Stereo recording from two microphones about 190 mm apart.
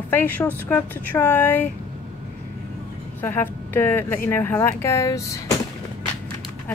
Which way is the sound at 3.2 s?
10° left (ahead or behind).